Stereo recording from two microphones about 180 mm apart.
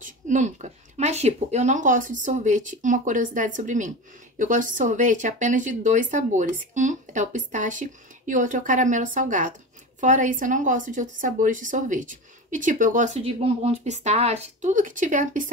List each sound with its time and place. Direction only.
0.0 s a woman's voice: 40° right (ahead or behind)